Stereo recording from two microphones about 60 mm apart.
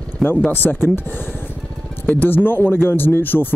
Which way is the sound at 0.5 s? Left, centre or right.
Left.